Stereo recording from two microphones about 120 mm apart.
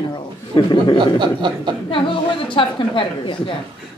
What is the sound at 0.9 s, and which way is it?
Speech, 40° right (ahead or behind).